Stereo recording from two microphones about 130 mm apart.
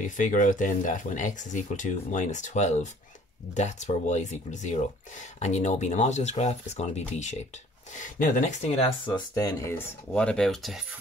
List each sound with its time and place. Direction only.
0.0 s speech: 85° left; by 7.3 s 60° left (ahead or behind)
8.0 s speech: 75° left (ahead or behind); by 8.8 s 60° left (ahead or behind)
9.3 s speech: 25° left (ahead or behind)
10.1 s speech: 5° left (ahead or behind)